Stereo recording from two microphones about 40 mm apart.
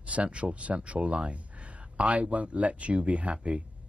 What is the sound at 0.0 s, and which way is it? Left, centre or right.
Speech, right.